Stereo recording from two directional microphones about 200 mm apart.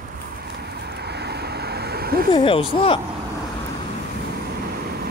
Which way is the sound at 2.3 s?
25° left (ahead or behind).